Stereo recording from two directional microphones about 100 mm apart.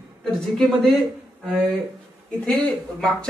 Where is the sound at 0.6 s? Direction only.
5° left (ahead or behind).